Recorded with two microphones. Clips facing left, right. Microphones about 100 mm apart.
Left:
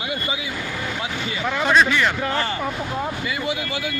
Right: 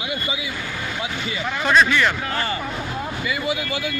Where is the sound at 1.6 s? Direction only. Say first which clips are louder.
Right 1 dB; 20° left (ahead or behind).